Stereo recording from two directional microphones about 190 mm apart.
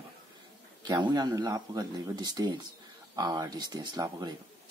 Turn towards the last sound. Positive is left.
turn(degrees=-20)  # may be behind; listen again after turning